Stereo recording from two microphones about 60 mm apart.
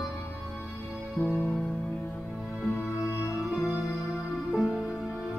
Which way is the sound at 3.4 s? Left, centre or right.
Centre.